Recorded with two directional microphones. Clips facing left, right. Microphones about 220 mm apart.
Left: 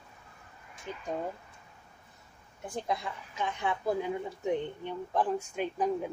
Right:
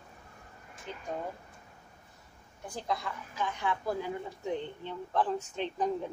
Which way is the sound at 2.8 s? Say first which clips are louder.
Right 2 dB; 20° left (ahead or behind).